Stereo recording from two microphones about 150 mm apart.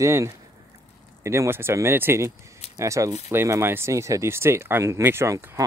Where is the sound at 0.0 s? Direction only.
20° right (ahead or behind).